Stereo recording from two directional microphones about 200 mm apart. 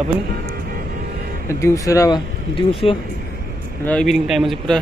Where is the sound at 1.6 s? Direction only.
15° left (ahead or behind).